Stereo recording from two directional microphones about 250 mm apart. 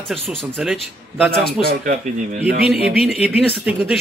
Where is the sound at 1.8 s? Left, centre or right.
Right.